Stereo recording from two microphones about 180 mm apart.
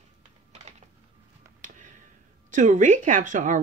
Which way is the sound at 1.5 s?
45° right (ahead or behind).